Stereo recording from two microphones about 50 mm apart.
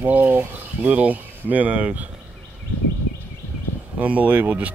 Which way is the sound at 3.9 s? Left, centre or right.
Right.